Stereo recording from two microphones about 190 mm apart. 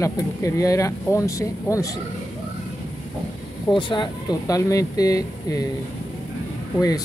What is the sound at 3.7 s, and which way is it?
Speech, 25° left (ahead or behind).